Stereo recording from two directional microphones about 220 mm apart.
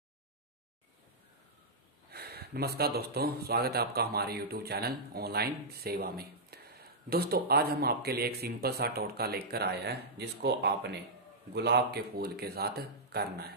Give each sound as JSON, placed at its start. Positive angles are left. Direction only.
{"t": 2.0, "sound": "speech", "side_deg": -45}